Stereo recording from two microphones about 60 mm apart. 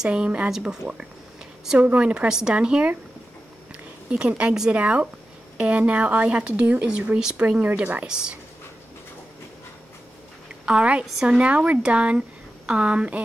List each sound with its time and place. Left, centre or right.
0.0 s a woman's voice: centre
4.1 s a woman's voice: centre
10.6 s a woman's voice: centre